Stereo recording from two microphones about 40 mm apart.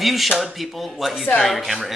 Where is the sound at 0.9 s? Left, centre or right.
Centre.